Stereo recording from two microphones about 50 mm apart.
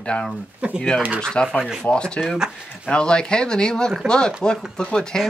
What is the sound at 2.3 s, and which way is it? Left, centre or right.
Speech, centre.